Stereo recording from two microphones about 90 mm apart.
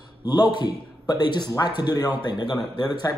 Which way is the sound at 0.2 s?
55° left (ahead or behind).